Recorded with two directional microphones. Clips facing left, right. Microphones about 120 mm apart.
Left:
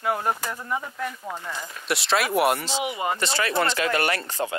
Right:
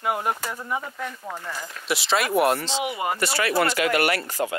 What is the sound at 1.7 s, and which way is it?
Speech, centre (ahead or behind).